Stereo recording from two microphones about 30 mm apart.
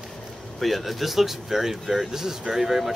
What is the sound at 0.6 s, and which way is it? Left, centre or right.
Speech, centre.